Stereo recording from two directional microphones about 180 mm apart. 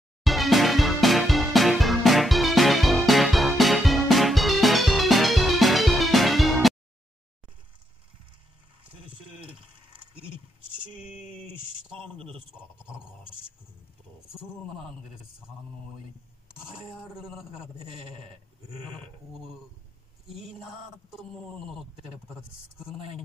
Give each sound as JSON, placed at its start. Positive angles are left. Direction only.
{"t": 0.2, "sound": "music", "side_deg": 0}
{"t": 11.9, "sound": "a sound", "side_deg": -30}
{"t": 18.7, "sound": "sheep", "side_deg": -25}